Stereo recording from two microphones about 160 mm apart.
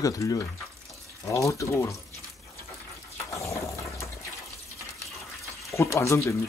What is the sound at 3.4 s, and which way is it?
Engine, 20° left (ahead or behind).